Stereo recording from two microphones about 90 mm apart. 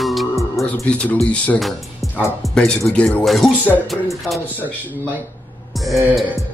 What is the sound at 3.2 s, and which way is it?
Speech, centre (ahead or behind).